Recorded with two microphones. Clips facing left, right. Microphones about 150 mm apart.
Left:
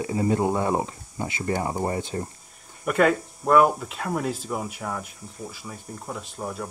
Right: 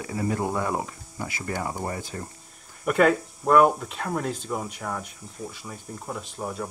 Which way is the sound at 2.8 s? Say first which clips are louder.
Even; centre (ahead or behind).